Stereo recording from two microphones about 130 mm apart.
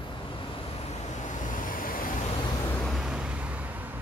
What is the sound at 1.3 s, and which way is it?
Vehicle, 85° left.